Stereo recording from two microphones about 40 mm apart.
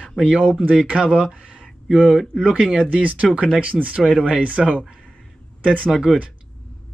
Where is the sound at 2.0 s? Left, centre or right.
Centre.